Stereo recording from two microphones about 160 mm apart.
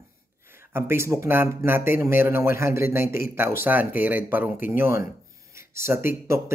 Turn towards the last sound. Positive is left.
turn(degrees=-15)  # may be behind; listen again after turning